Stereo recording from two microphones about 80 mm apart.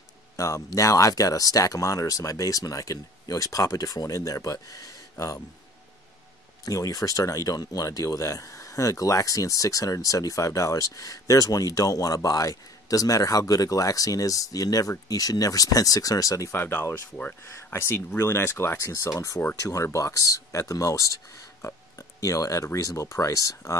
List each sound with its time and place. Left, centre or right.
0.4 s speech: left
6.6 s speech: left
17.7 s speech: left